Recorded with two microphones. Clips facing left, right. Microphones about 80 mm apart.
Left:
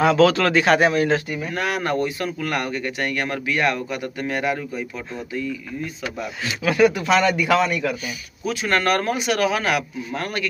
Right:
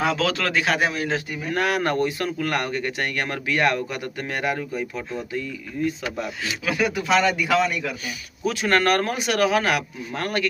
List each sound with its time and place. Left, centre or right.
0.0 s a man's voice: centre
1.5 s speech: right
2.1 s speech: centre
2.5 s speech: right
6.4 s a man's voice: centre
8.6 s speech: right